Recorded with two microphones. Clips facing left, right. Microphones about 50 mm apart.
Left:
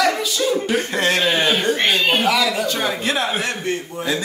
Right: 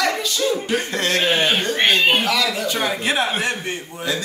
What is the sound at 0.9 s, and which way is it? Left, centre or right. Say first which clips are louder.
Speech: left 3 dB; centre.